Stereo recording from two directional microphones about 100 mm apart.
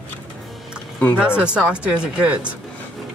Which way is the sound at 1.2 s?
10° right (ahead or behind).